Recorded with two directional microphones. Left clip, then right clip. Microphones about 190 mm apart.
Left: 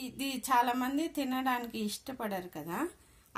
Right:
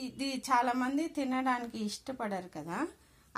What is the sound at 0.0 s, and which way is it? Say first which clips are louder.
A woman's voice: even; 10° right (ahead or behind).